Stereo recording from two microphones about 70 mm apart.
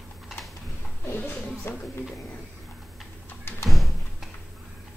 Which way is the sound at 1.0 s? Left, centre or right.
Left.